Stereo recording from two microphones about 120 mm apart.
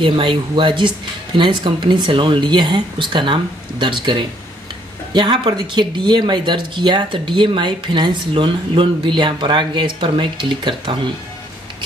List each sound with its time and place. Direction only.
0.0 s speech: 45° right (ahead or behind)